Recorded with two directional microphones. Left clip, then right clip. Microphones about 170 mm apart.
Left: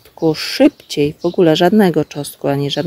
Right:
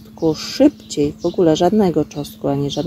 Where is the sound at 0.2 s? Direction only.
20° left (ahead or behind).